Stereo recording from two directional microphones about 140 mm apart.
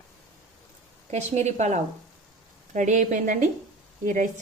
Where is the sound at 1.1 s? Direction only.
55° right (ahead or behind).